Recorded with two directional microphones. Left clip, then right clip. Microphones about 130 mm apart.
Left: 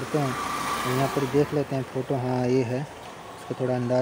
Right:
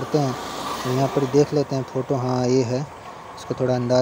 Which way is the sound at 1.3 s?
20° right (ahead or behind).